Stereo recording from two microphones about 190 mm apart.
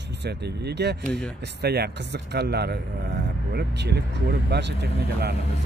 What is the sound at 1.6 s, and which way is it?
Speech, 55° right (ahead or behind).